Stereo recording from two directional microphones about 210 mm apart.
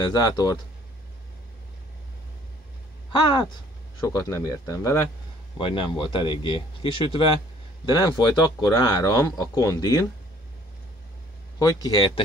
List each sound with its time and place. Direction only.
0.0 s speech: 20° left (ahead or behind)
3.1 s speech: 20° left (ahead or behind)
11.5 s speech: 15° left (ahead or behind)